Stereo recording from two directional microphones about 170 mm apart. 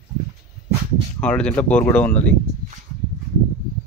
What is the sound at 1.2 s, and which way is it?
Speech, 5° left (ahead or behind).